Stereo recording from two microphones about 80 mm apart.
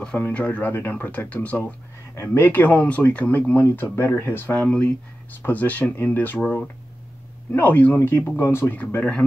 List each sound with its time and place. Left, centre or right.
0.2 s speech: centre
2.1 s speech: left
2.4 s speech: left
4.6 s speech: centre
8.0 s speech: left